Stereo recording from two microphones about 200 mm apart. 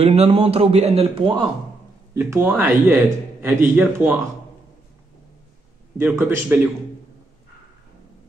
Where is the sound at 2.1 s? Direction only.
15° right (ahead or behind).